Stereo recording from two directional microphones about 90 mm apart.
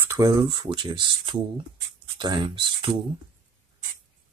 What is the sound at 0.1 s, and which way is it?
Speech, 45° right (ahead or behind).